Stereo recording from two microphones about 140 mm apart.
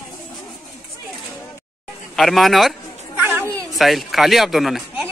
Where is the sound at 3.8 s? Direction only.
Centre (ahead or behind).